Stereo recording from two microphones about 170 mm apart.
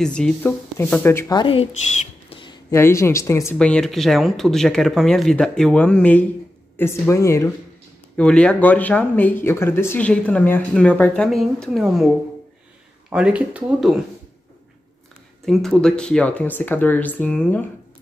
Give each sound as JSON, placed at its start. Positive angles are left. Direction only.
{"t": 0.0, "sound": "a woman's voice", "side_deg": 5}
{"t": 2.7, "sound": "speech", "side_deg": 15}
{"t": 3.5, "sound": "speech", "side_deg": 5}
{"t": 13.1, "sound": "speech", "side_deg": -5}
{"t": 15.4, "sound": "speech", "side_deg": 0}